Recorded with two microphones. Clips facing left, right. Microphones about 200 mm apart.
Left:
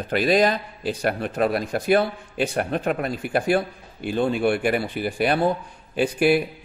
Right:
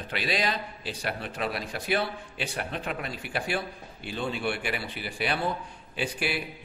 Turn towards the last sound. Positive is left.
turn(degrees=45)  # may be behind; listen again after turning